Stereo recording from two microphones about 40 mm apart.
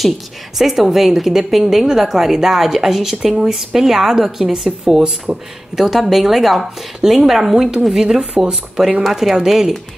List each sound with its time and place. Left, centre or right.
0.6 s a woman's voice: centre